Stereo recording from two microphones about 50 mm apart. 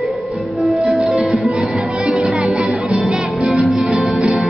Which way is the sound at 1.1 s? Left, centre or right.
Centre.